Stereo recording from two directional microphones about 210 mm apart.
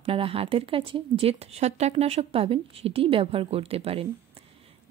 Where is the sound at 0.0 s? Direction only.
25° right (ahead or behind).